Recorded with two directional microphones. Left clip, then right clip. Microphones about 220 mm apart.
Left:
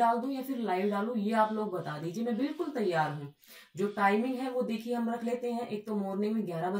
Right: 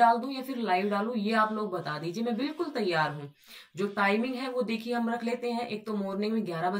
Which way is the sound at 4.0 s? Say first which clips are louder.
Right 1 dB; 5° right (ahead or behind).